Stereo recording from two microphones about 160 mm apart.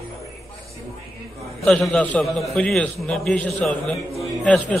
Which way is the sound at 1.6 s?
5° left (ahead or behind).